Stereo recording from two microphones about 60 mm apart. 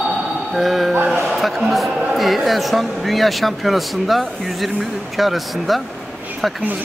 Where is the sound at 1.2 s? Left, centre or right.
Centre.